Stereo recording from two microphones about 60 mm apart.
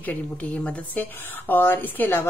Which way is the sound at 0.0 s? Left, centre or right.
Left.